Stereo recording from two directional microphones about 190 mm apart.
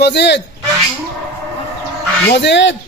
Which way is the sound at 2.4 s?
70° left (ahead or behind).